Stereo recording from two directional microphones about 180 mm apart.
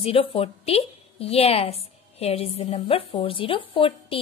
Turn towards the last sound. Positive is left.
turn(degrees=30)  # may be behind; listen again after turning